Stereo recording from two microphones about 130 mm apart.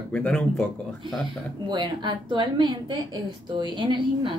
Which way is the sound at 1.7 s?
35° right (ahead or behind).